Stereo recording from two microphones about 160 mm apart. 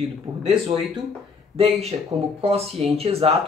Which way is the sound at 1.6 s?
40° right (ahead or behind).